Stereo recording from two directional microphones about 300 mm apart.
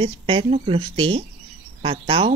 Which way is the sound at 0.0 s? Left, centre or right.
Centre.